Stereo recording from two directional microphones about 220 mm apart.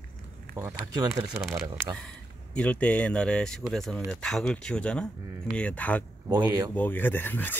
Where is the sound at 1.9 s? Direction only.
5° left (ahead or behind).